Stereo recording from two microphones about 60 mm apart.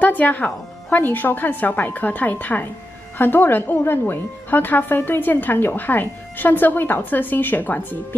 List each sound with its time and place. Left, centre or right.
0.0 s a woman's voice: left